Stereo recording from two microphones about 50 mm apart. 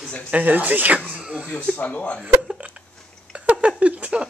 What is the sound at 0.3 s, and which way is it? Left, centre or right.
Speech, right.